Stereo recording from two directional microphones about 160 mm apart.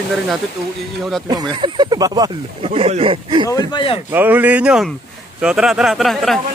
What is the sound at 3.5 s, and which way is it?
Speech, 25° left (ahead or behind).